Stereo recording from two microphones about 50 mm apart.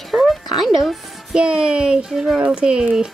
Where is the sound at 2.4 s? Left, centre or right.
Centre.